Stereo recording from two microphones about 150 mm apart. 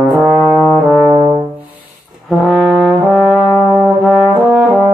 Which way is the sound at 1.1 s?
30° right (ahead or behind).